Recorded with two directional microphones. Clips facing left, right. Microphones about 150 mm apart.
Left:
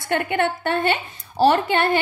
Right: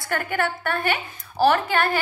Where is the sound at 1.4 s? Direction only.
25° left (ahead or behind).